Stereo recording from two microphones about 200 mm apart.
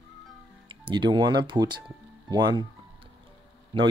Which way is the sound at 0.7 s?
25° right (ahead or behind).